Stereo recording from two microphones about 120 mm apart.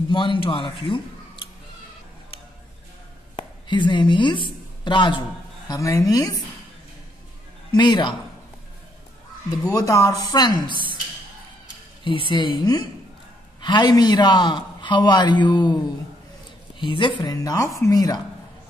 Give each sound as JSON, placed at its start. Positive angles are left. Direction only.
{"t": 0.1, "sound": "a man's voice", "side_deg": 45}
{"t": 3.3, "sound": "a woman's voice", "side_deg": 40}
{"t": 5.7, "sound": "speech", "side_deg": 25}
{"t": 7.7, "sound": "a man's voice", "side_deg": 40}
{"t": 9.5, "sound": "speech", "side_deg": 30}
{"t": 12.0, "sound": "a man's voice", "side_deg": 45}
{"t": 16.8, "sound": "a man's voice", "side_deg": 40}